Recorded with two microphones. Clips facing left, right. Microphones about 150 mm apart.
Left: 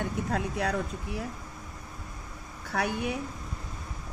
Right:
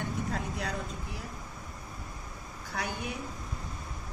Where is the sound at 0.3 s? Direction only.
60° left (ahead or behind).